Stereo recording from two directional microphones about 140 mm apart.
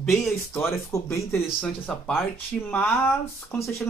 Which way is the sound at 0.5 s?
15° left (ahead or behind).